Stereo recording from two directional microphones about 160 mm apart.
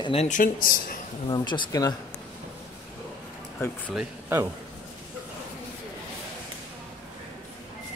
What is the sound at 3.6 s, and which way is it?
Speech, 20° left (ahead or behind).